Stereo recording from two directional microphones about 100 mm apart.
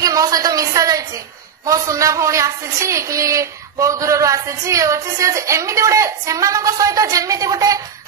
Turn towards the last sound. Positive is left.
turn(degrees=-35)  # may be behind; listen again after turning